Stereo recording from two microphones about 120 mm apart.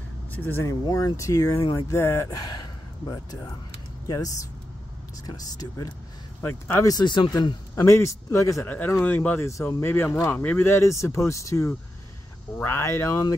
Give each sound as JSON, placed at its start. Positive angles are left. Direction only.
{"t": 0.3, "sound": "speech", "side_deg": 15}
{"t": 0.8, "sound": "speech", "side_deg": 30}
{"t": 2.2, "sound": "gasp", "side_deg": 35}
{"t": 5.2, "sound": "speech", "side_deg": 35}
{"t": 6.4, "sound": "speech", "side_deg": 15}
{"t": 6.9, "sound": "speech", "side_deg": 40}
{"t": 7.7, "sound": "speech", "side_deg": 25}